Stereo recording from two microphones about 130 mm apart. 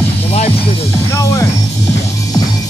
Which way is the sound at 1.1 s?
25° left (ahead or behind).